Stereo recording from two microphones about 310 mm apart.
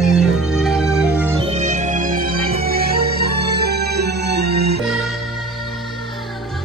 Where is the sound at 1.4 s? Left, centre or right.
Right.